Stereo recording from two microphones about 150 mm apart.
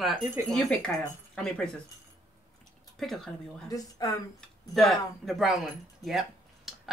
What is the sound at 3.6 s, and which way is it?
Speech, 25° left (ahead or behind).